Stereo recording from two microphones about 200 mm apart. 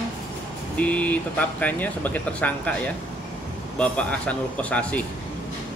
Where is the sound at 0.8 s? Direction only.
5° left (ahead or behind).